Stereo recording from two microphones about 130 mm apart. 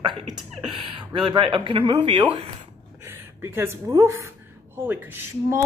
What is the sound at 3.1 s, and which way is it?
A woman's voice, 20° right (ahead or behind).